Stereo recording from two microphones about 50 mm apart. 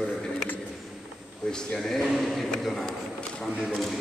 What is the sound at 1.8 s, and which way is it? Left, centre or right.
Speech, centre.